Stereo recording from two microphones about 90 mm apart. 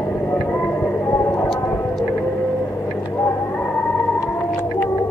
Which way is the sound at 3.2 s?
20° left (ahead or behind).